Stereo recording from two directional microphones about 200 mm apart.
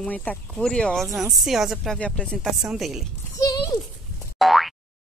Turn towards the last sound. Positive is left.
turn(degrees=0)  # may be behind; listen again after turning